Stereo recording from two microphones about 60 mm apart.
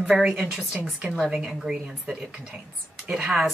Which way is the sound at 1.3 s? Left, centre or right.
Centre.